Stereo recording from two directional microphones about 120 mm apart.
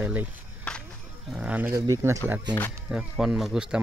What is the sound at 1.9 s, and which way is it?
Speech, 25° right (ahead or behind).